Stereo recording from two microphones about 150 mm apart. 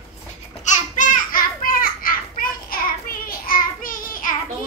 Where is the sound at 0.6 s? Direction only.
55° left (ahead or behind).